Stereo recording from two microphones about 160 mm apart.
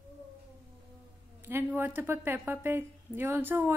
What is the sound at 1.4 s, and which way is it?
Speech, 15° right (ahead or behind).